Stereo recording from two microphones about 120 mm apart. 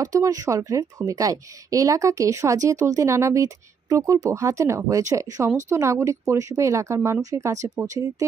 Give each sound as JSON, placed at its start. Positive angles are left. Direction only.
{"t": 0.0, "sound": "a woman's voice", "side_deg": -30}